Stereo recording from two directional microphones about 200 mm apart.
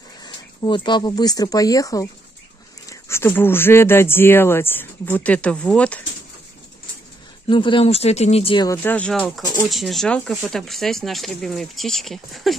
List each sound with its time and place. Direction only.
0.2 s speech: 25° left (ahead or behind); by 5.9 s 5° left (ahead or behind)
7.4 s speech: 25° left (ahead or behind)
8.6 s speech: 10° left (ahead or behind)